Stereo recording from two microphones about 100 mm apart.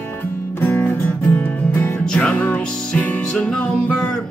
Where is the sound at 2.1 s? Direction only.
10° left (ahead or behind).